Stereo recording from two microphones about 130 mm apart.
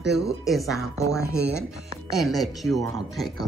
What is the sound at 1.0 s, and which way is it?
Speech, 25° left (ahead or behind).